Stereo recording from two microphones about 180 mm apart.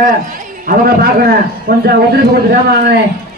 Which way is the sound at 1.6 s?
60° right (ahead or behind).